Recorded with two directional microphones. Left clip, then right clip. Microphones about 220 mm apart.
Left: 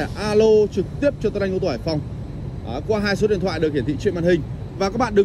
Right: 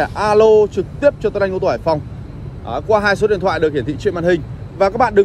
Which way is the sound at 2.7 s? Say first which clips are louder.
Right 8 dB; 5° left (ahead or behind).